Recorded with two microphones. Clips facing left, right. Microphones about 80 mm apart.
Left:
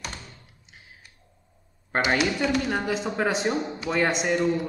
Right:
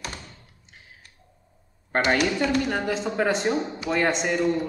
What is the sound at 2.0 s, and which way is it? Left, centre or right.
Speech, centre.